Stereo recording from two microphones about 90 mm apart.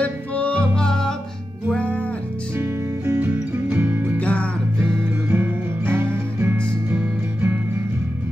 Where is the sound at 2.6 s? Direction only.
25° right (ahead or behind).